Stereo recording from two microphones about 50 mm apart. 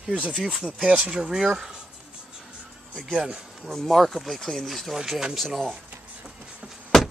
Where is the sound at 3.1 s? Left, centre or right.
Centre.